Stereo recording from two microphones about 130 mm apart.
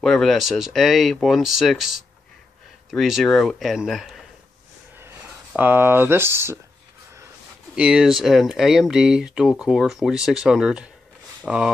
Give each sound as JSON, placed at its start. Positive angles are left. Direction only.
{"t": 0.0, "sound": "speech", "side_deg": 0}
{"t": 2.9, "sound": "speech", "side_deg": 0}
{"t": 5.5, "sound": "speech", "side_deg": -15}
{"t": 7.7, "sound": "speech", "side_deg": -5}